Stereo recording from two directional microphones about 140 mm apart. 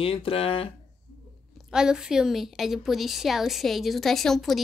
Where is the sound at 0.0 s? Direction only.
40° left (ahead or behind).